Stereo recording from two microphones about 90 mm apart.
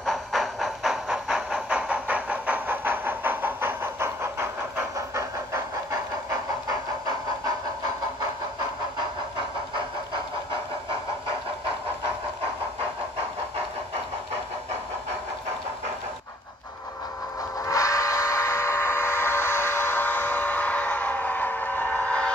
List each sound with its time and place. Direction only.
0.0 s train: centre (ahead or behind); by 5.9 s 35° right (ahead or behind)
17.6 s vehicle: 35° left (ahead or behind); by 22.3 s 15° left (ahead or behind)